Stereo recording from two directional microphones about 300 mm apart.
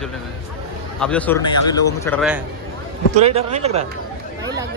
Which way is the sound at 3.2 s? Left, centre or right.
Right.